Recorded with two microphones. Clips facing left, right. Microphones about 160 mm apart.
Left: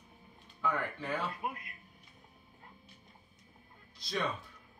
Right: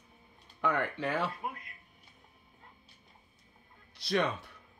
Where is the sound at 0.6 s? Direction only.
75° right (ahead or behind).